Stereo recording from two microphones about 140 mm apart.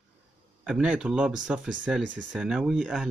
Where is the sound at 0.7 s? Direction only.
5° right (ahead or behind).